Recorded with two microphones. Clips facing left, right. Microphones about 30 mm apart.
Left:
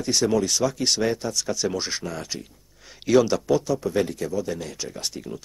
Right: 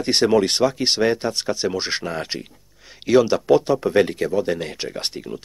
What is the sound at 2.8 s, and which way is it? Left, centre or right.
Speech, centre.